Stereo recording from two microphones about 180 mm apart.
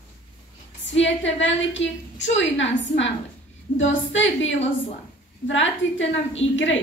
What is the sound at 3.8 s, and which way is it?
A woman's voice, 90° left.